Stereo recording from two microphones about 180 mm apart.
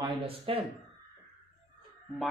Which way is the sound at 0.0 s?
30° right (ahead or behind).